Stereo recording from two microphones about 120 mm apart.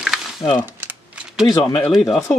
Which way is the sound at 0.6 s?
15° right (ahead or behind).